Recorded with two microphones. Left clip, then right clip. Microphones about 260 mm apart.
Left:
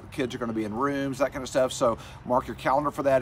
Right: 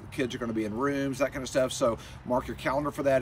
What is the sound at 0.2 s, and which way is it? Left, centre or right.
Speech, centre.